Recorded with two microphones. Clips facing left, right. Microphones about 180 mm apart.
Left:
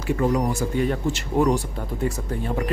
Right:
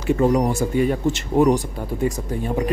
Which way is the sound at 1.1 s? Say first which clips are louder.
Right 4 dB; 15° right (ahead or behind).